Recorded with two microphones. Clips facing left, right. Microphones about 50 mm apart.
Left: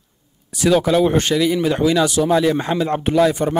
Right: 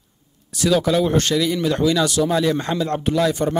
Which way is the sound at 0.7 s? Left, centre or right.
Left.